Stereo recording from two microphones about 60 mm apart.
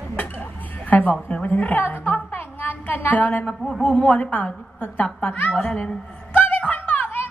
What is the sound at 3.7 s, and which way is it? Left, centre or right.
A woman's voice, centre.